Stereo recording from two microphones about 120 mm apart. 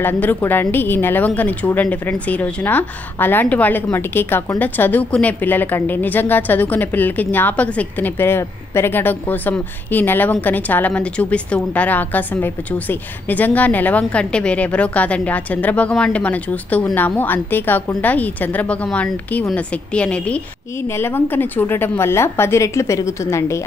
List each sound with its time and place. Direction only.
0.0 s a woman's voice: 15° left (ahead or behind)